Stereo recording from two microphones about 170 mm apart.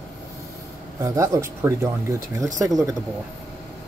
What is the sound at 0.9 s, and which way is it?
Speech, 20° right (ahead or behind).